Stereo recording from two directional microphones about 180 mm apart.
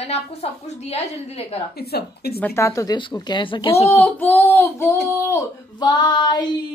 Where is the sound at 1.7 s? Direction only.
60° left (ahead or behind).